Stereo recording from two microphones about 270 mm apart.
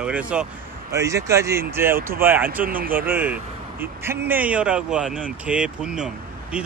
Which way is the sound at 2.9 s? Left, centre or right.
Centre.